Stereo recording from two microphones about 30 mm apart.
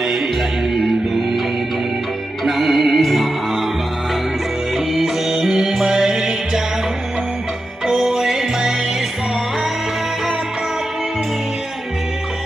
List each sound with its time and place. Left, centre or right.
0.7 s music: centre
2.4 s music: centre
5.0 s music: centre
7.8 s music: centre